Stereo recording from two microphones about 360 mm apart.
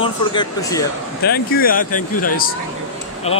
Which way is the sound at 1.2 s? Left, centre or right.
Left.